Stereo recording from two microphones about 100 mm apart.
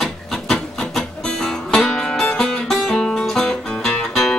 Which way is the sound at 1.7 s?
5° left (ahead or behind).